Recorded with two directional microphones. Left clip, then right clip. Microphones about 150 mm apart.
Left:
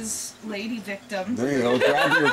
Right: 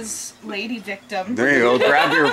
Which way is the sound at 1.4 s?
15° right (ahead or behind).